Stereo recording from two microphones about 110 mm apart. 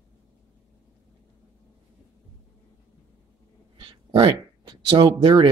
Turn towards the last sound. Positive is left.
turn(degrees=-45)  # may be behind; listen again after turning